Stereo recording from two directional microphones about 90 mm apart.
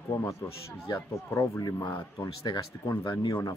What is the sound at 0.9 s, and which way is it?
Speech, 45° left (ahead or behind).